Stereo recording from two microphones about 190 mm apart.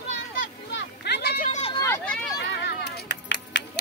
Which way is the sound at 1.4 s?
40° left (ahead or behind).